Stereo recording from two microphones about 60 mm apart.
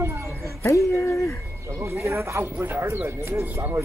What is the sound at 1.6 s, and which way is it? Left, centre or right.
Speech, right.